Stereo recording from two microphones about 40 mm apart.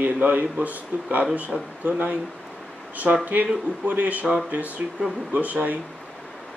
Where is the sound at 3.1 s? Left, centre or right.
Right.